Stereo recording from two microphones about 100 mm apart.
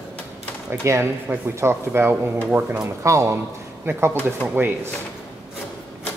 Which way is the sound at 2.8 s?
30° right (ahead or behind).